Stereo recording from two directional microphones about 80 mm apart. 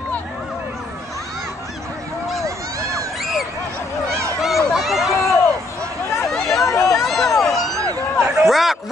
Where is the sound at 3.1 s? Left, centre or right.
Centre.